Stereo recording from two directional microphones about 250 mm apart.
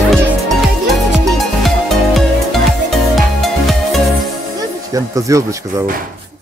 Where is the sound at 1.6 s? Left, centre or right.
Centre.